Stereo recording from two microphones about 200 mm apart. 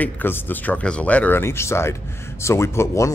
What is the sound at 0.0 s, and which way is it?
Speech, 10° left (ahead or behind).